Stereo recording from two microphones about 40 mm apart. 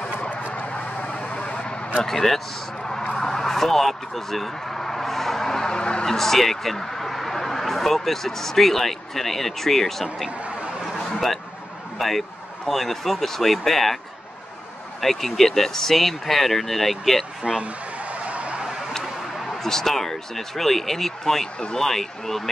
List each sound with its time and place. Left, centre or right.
0.5 s vehicle: left
2.0 s speech: centre
3.1 s a sound: centre
6.0 s speech: centre
10.9 s a sound: centre
12.0 s speech: centre
15.0 s speech: centre
17.4 s speech: centre
18.2 s vehicle: right
19.3 s speech: centre